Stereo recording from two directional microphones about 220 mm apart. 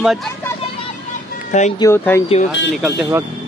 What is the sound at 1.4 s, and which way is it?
Speech, 30° left (ahead or behind).